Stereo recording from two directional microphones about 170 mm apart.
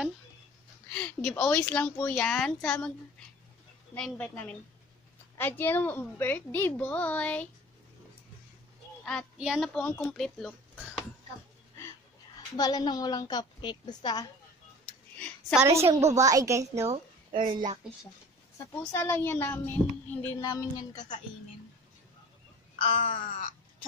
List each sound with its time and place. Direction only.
0.8 s speech: 5° left (ahead or behind)
3.9 s speech: 5° left (ahead or behind)
9.4 s speech: centre (ahead or behind)
12.4 s a woman's voice: 25° left (ahead or behind)
15.6 s a woman's voice: 15° right (ahead or behind)
16.9 s a woman's voice: 30° right (ahead or behind)
18.9 s speech: 15° left (ahead or behind)
22.8 s wail: 35° left (ahead or behind)
23.0 s crow: 45° left (ahead or behind)